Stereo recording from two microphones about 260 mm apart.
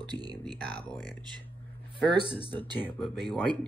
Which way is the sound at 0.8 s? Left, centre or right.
Centre.